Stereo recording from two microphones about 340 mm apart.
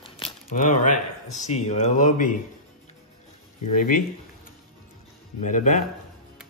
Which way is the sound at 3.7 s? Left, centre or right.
Left.